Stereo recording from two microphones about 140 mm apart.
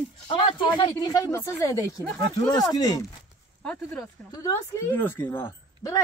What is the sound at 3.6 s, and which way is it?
Speech, 15° left (ahead or behind).